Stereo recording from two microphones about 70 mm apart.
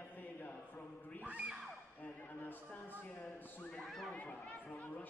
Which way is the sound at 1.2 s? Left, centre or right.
Right.